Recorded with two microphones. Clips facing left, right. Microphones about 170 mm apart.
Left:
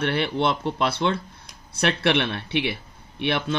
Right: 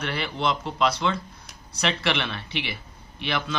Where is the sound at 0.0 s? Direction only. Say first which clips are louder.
Left 4 dB; 60° left (ahead or behind).